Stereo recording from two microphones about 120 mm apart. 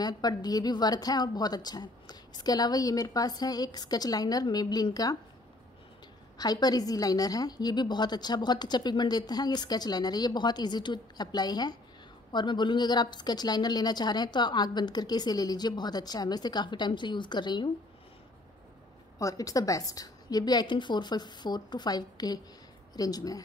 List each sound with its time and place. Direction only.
0.0 s a woman's voice: 35° left (ahead or behind)
6.3 s a woman's voice: 35° left (ahead or behind)
19.1 s a woman's voice: 30° left (ahead or behind)